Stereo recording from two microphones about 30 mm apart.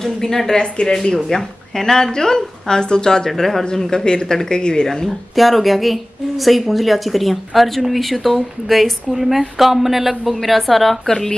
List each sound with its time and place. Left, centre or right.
0.0 s speech: centre
0.6 s speech: left
1.0 s speech: centre
3.3 s speech: centre
3.9 s speech: left
5.3 s speech: centre
11.1 s speech: centre